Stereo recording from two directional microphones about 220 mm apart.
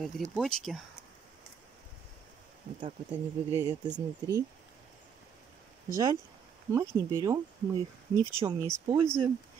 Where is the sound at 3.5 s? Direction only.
20° right (ahead or behind).